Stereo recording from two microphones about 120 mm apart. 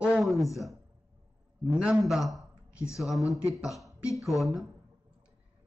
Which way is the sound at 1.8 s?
5° right (ahead or behind).